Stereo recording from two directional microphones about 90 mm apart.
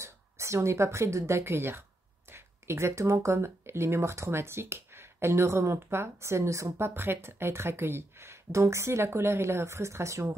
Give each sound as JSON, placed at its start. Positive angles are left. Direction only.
{"t": 0.0, "sound": "speech", "side_deg": -30}